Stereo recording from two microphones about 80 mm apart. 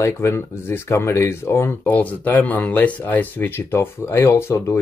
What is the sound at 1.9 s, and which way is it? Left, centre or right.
Speech, centre.